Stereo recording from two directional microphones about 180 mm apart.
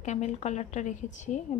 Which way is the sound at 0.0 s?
40° left (ahead or behind).